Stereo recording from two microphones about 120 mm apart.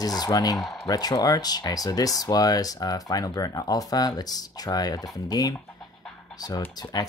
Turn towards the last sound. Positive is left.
turn(degrees=25)  # may be behind; listen again after turning